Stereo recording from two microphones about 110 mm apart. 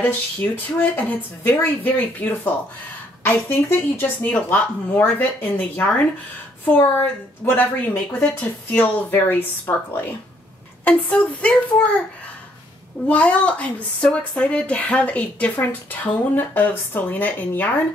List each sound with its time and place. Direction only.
0.0 s a woman's voice: 15° left (ahead or behind)
13.1 s a woman's voice: 10° left (ahead or behind)